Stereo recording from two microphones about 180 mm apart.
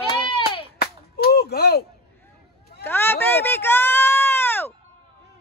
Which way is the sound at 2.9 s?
10° left (ahead or behind).